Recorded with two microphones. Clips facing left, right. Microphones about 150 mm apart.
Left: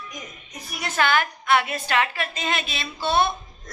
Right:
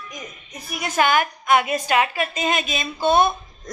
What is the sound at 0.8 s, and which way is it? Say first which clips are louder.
A woman's voice: right 3 dB; 15° right (ahead or behind).